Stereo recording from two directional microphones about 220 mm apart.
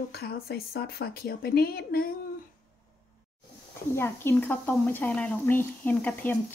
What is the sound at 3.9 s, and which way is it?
Speech, 10° left (ahead or behind).